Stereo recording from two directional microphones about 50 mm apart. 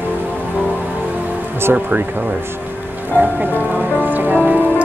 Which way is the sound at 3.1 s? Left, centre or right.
Right.